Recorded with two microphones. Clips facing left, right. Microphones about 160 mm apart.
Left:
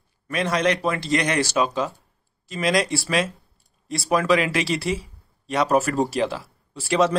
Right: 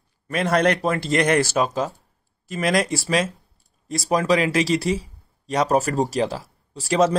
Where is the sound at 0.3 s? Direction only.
50° right (ahead or behind).